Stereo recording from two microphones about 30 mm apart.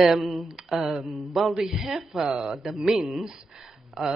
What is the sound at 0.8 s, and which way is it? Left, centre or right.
Speech, centre.